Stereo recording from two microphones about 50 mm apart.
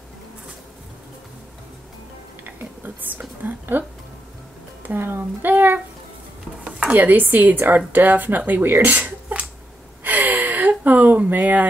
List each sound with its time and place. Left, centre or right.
2.4 s speech: right
4.8 s speech: right
6.9 s speech: right
10.0 s gasp: right